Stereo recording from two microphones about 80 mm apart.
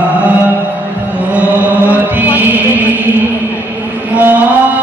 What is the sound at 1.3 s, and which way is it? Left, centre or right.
Chant, centre.